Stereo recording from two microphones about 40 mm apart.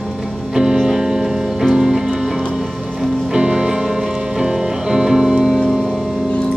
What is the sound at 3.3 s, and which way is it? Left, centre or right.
Music, centre.